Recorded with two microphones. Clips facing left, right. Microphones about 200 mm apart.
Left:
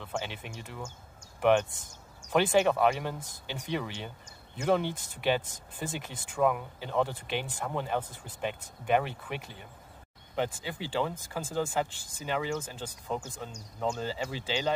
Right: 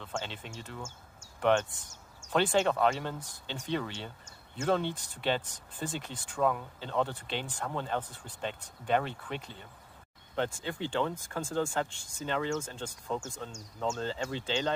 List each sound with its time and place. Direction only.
0.0 s speech: 10° left (ahead or behind)